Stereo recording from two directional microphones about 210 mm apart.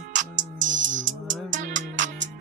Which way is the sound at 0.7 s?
60° right (ahead or behind).